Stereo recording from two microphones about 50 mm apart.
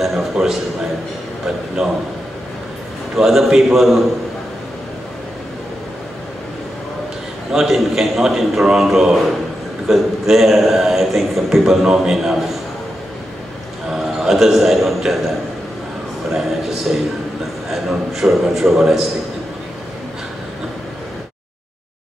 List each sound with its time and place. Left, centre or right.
0.0 s a man's voice: centre
3.2 s a man's voice: centre
7.5 s a man's voice: centre
13.9 s a man's voice: centre